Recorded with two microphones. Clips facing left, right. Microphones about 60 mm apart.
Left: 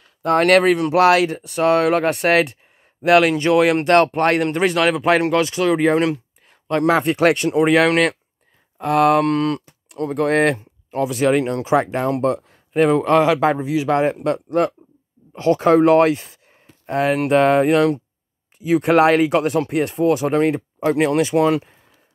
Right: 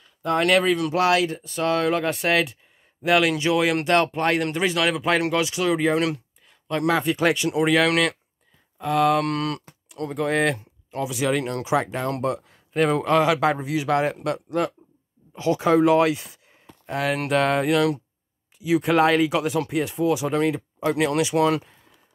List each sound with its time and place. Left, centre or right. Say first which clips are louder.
0.0 s a sound: left 6 dB; left
0.4 s speech: left 5 dB; left
4.4 s speech: left 5 dB; left
8.8 s speech: left 5 dB; left
9.2 s a man's voice: left 7 dB; left
10.1 s speech: left 5 dB; left
10.5 s a sound: left 5 dB; left
11.1 s speech: left 6 dB; left
11.3 s a man's voice: left 6 dB; left
11.7 s speech: left 5 dB; left
12.2 s a man's voice: left 6 dB; left
18.8 s speech: left 5 dB; left
19.1 s speech: left 5 dB; left
20.8 s a man's voice: left 4 dB; left